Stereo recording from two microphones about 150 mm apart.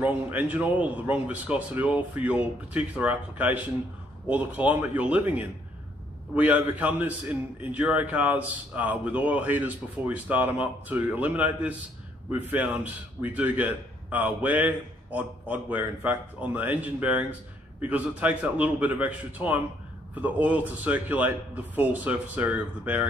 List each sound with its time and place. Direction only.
0.0 s a man's voice: 10° right (ahead or behind)